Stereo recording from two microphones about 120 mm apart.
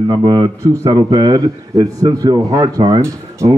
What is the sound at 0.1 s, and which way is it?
Speech, 35° right (ahead or behind).